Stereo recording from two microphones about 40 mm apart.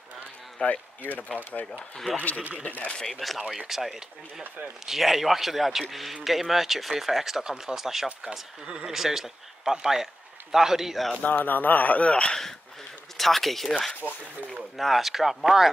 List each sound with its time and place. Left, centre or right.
0.6 s speech: left
1.0 s speech: left
1.7 s speech: centre
2.9 s speech: centre
3.3 s speech: centre
11.2 s speech: left
13.2 s speech: centre
14.8 s speech: centre